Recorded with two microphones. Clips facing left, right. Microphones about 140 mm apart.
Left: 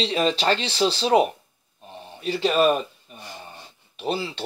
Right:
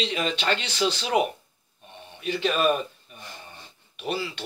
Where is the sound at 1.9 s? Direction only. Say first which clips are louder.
Left 2 dB; 35° left (ahead or behind).